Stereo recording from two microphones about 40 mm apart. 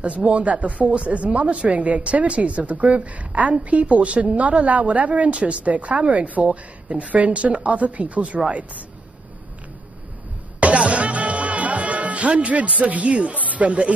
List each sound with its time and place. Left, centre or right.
0.0 s a woman's voice: right
10.6 s music: right
13.6 s a woman's voice: right